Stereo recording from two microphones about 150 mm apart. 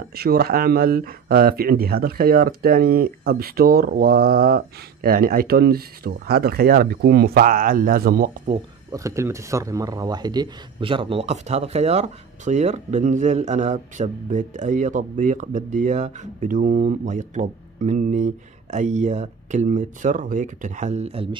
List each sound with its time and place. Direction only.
0.1 s speech: 90° right
8.9 s speech: 20° right (ahead or behind); by 21.4 s 40° right (ahead or behind)